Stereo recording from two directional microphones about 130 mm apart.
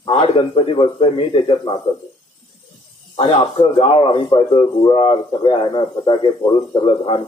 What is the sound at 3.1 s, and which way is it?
Speech, 45° left (ahead or behind).